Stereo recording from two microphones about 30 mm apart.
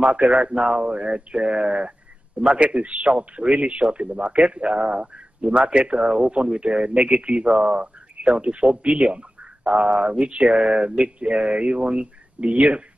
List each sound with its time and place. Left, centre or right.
0.0 s speech: right
7.8 s speech: right
8.6 s speech: right